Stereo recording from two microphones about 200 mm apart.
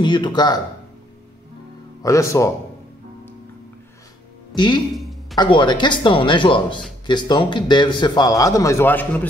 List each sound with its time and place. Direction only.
0.0 s speech: 20° left (ahead or behind)
2.0 s a man's voice: 15° left (ahead or behind)
4.6 s a man's voice: 20° left (ahead or behind)